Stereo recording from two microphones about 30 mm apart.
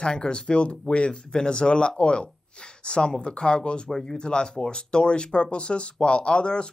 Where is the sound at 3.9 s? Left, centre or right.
Centre.